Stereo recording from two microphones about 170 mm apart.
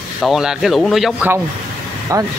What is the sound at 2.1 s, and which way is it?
Speech, 20° right (ahead or behind).